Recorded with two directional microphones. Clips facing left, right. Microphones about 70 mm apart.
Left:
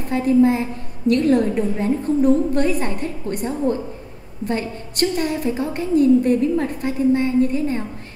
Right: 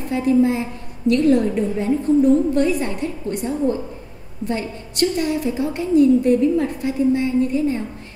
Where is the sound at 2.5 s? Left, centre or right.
Left.